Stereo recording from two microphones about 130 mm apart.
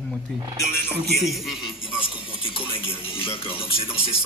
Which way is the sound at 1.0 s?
Centre (ahead or behind).